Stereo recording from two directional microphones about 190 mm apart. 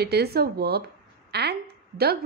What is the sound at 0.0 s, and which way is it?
A woman's voice, 55° right (ahead or behind).